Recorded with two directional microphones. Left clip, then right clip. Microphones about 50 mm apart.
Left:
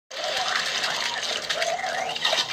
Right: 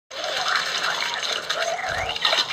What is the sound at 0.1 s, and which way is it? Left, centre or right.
Water, right.